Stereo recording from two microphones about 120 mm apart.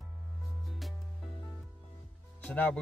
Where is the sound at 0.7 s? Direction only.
Centre (ahead or behind).